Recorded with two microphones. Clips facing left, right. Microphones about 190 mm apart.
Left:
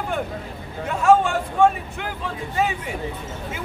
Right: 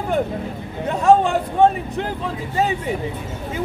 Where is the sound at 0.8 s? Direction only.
35° right (ahead or behind).